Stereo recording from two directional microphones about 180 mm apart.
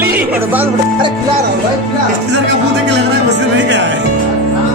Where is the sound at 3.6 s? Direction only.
80° right.